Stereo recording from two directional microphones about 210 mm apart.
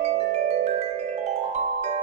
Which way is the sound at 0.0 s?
30° right (ahead or behind).